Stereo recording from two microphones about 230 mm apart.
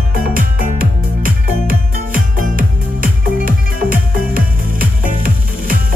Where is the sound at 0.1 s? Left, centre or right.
Right.